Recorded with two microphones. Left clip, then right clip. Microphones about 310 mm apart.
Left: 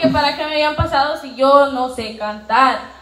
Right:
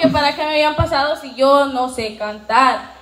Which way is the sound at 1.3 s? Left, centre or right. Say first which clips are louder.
Left 2 dB; centre.